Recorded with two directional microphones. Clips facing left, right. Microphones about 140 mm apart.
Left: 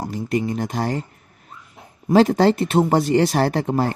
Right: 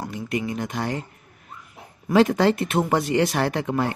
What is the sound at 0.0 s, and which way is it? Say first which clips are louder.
Speech: left 4 dB; 35° left (ahead or behind).